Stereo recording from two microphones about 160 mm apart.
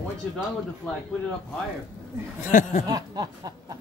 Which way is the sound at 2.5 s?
55° left (ahead or behind).